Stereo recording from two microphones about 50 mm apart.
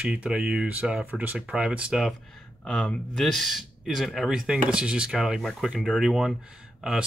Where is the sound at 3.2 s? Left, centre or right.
Centre.